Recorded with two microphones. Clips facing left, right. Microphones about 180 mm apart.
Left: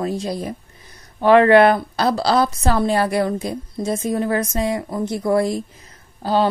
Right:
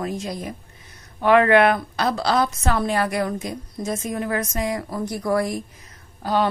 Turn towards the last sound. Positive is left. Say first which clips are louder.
# left 3 dB
turn(degrees=30)  # may be behind; listen again after turning